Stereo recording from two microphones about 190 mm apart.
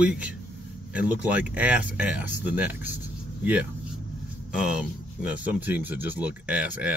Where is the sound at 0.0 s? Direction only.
5° right (ahead or behind).